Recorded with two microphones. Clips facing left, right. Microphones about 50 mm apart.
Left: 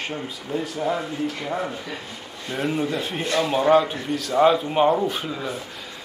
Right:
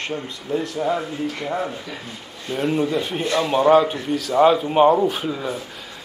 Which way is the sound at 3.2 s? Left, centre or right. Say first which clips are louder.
Even; centre.